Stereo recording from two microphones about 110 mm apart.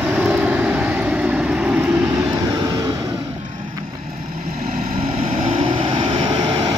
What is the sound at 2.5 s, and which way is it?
Vehicle, 35° right (ahead or behind).